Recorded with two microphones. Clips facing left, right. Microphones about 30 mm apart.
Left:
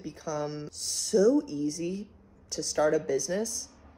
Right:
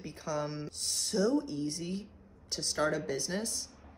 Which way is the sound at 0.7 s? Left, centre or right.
Right.